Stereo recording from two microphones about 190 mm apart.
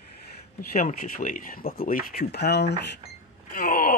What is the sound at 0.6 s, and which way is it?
Speech, 45° left (ahead or behind).